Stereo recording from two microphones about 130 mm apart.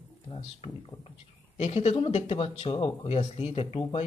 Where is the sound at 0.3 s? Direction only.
50° left (ahead or behind).